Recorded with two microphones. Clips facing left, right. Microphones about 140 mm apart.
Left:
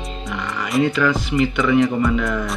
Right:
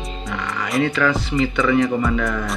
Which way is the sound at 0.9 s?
15° left (ahead or behind).